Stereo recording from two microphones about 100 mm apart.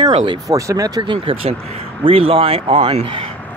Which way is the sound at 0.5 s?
35° right (ahead or behind).